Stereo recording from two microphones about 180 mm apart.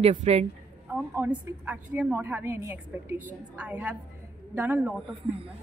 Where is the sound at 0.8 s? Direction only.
10° right (ahead or behind).